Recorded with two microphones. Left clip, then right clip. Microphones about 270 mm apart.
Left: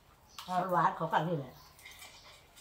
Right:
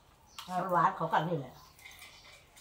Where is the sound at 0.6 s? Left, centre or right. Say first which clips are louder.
Right 1 dB; centre.